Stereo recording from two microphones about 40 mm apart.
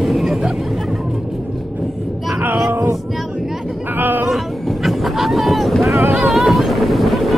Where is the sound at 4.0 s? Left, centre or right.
Right.